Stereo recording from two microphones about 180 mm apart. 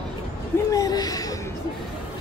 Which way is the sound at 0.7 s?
20° left (ahead or behind).